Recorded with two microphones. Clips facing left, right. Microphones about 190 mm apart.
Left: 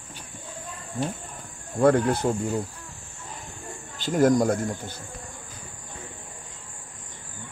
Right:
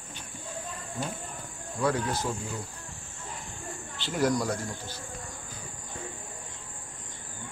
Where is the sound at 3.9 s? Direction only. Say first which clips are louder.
Left 7 dB; 45° left (ahead or behind).